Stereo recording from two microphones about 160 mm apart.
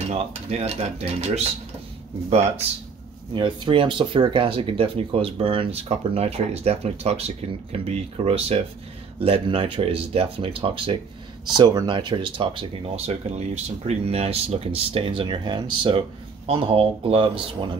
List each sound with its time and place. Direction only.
0.1 s speech: 40° right (ahead or behind)
3.3 s speech: 30° right (ahead or behind)